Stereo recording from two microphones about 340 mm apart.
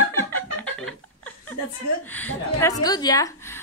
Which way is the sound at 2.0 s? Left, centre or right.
Centre.